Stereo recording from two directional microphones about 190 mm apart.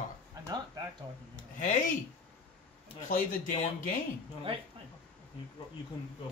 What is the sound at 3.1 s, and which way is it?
Speech, 45° left (ahead or behind).